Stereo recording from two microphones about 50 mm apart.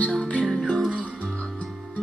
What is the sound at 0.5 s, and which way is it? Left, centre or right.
Music, centre.